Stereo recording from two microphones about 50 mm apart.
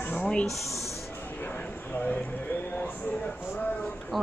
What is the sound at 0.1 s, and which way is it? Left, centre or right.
Snake, left.